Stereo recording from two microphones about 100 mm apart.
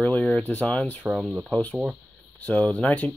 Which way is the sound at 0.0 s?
15° left (ahead or behind).